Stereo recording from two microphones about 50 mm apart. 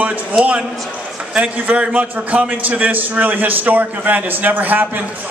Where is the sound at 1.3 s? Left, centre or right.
Right.